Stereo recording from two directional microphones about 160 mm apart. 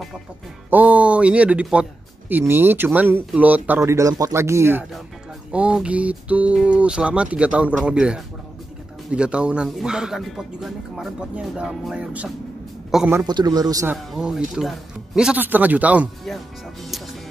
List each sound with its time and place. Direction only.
0.7 s speech: 10° right (ahead or behind)
13.1 s a man's voice: 25° right (ahead or behind)
14.1 s speech: 5° right (ahead or behind)